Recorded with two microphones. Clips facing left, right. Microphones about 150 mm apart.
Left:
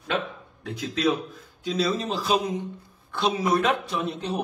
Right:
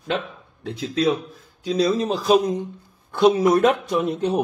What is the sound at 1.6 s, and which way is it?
A man's voice, 40° right (ahead or behind).